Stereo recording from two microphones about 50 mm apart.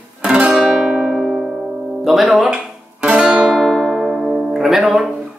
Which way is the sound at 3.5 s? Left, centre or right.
Centre.